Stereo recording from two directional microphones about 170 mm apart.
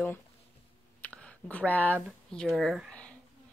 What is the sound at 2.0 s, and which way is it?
Speech, centre (ahead or behind).